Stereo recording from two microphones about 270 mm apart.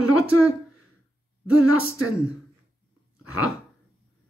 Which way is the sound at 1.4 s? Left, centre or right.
Left.